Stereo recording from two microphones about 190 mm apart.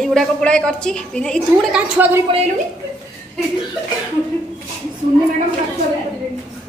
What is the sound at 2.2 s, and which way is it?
Speech, 30° right (ahead or behind).